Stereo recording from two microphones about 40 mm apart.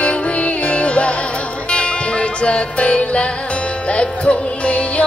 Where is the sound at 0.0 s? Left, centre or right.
Left.